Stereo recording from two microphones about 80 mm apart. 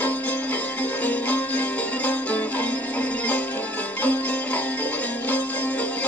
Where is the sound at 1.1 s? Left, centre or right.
Centre.